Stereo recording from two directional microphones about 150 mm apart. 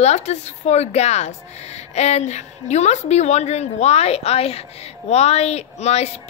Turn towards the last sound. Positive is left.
turn(degrees=45)  # may be behind; listen again after turning